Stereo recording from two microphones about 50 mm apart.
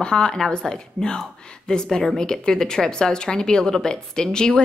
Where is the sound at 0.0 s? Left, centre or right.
Centre.